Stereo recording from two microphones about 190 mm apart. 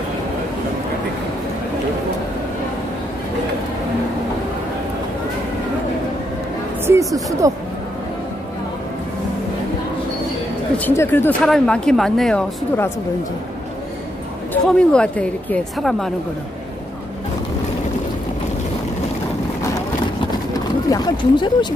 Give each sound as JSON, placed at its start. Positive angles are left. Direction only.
{"t": 6.9, "sound": "a woman's voice", "side_deg": -15}
{"t": 10.8, "sound": "speech", "side_deg": 10}
{"t": 14.5, "sound": "speech", "side_deg": 5}
{"t": 20.9, "sound": "speech", "side_deg": 20}